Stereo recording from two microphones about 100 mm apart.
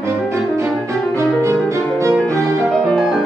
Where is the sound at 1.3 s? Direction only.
30° right (ahead or behind).